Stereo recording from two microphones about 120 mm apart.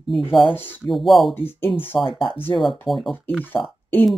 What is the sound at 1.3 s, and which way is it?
Speech, 20° left (ahead or behind).